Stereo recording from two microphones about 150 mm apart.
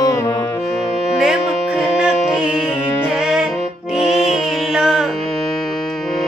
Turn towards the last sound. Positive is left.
turn(degrees=0)  # may be behind; listen again after turning